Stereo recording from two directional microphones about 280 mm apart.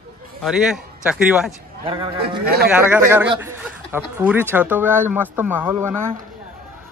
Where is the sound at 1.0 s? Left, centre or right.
Centre.